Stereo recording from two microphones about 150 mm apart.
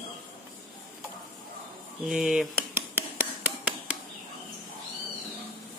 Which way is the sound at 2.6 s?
15° right (ahead or behind).